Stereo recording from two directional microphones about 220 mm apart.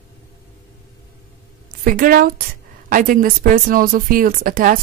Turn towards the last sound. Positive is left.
turn(degrees=-40)  # may be behind; listen again after turning